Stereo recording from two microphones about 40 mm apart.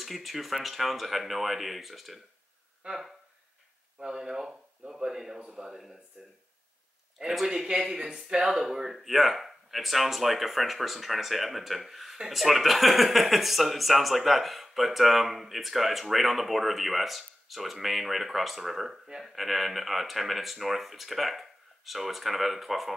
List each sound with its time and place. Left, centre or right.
0.0 s speech: centre
2.8 s a man's voice: right
4.0 s speech: centre
6.2 s speech: right
7.4 s a man's voice: centre